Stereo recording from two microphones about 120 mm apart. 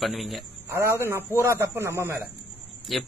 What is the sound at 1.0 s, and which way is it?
Speech, 20° right (ahead or behind).